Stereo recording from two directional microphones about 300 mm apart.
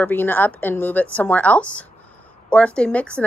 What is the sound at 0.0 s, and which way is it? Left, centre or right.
A woman's voice, centre.